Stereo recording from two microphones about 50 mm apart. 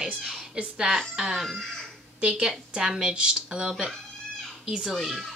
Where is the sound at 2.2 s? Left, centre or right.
Right.